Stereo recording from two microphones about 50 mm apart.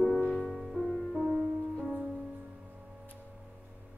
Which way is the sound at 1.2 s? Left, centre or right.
Centre.